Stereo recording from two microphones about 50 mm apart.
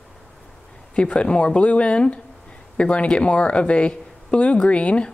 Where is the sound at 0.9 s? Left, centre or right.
Left.